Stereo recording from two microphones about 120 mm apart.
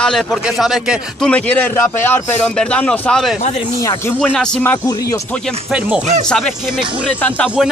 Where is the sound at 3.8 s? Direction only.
25° left (ahead or behind).